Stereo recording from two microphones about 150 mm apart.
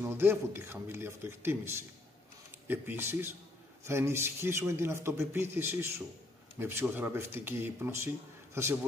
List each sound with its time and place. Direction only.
0.0 s a man's voice: 15° right (ahead or behind)